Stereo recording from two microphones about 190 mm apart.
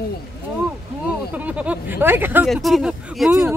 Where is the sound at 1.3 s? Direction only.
5° right (ahead or behind).